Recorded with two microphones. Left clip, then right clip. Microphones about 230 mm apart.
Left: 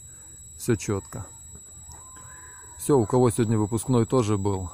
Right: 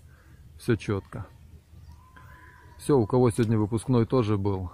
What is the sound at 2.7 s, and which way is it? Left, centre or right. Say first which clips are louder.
Speech: left 2 dB; centre.